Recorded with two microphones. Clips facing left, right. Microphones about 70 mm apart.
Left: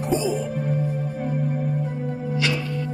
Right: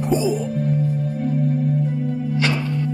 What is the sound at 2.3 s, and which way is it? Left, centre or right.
Music, right.